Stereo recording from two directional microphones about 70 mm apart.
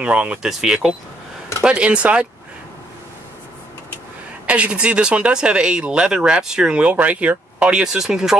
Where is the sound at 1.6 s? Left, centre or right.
Centre.